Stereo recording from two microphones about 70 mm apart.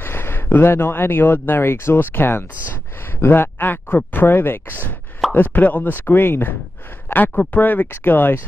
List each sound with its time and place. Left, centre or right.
0.0 s speech: left